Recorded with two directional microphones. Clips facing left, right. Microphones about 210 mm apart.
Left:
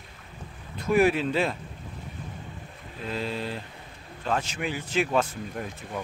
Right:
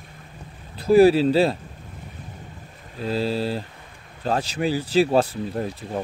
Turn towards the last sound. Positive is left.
turn(degrees=-35)  # may be behind; listen again after turning